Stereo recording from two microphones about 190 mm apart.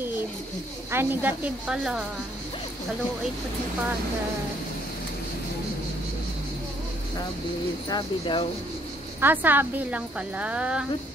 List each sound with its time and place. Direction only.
0.9 s a woman's voice: 10° right (ahead or behind)
7.9 s speech: 25° left (ahead or behind)
9.2 s a woman's voice: 10° right (ahead or behind)